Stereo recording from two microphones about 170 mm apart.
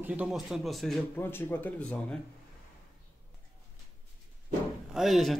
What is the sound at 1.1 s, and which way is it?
Speech, 15° left (ahead or behind).